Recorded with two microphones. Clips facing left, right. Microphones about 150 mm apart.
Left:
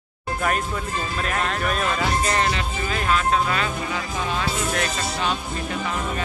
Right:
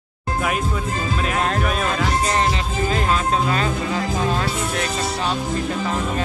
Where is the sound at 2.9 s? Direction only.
35° right (ahead or behind).